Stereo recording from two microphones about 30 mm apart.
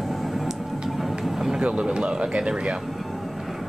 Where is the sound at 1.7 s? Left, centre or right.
Right.